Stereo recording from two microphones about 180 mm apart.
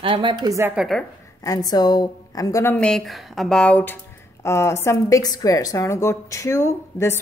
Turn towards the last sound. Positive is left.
turn(degrees=15)  # may be behind; listen again after turning